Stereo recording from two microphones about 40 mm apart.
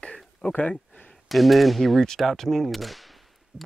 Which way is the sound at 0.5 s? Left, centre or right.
Left.